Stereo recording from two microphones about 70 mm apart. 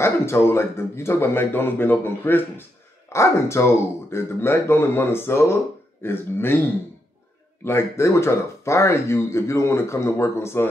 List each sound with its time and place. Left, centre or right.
0.0 s speech: left
3.1 s speech: left
7.6 s speech: left